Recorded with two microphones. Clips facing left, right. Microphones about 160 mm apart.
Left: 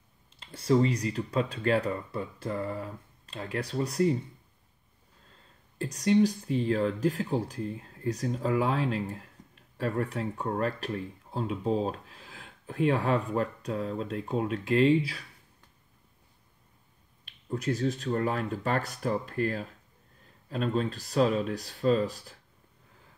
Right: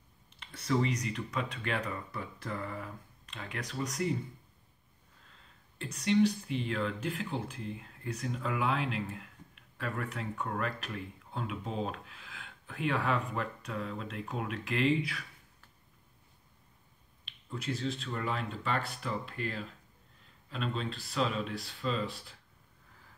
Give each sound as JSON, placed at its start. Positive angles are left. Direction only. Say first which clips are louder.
{"t": 0.3, "sound": "speech", "louder": "left 7 dB", "side_deg": 30}
{"t": 5.8, "sound": "speech", "louder": "left 4 dB", "side_deg": 35}
{"t": 17.2, "sound": "speech", "louder": "left 8 dB", "side_deg": 45}